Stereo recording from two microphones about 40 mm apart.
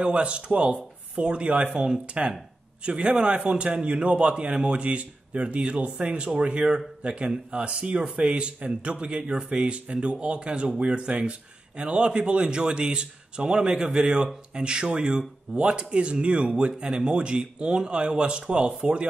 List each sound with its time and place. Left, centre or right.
0.0 s speech: right
2.8 s a man's voice: right